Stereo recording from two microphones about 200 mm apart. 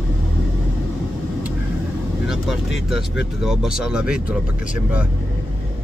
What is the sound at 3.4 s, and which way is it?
Speech, 5° right (ahead or behind).